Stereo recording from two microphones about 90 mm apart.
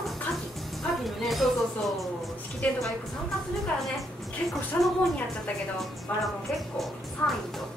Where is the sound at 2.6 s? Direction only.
15° left (ahead or behind).